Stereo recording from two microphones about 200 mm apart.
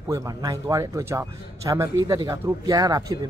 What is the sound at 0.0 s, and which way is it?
A man's voice, 15° right (ahead or behind).